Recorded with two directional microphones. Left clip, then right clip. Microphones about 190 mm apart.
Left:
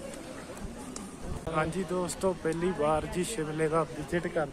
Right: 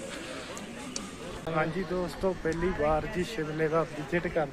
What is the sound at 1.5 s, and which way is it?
Speech, 10° left (ahead or behind).